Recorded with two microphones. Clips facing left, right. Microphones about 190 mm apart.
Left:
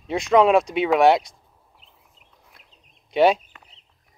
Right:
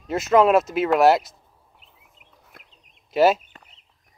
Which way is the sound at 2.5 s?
50° right (ahead or behind).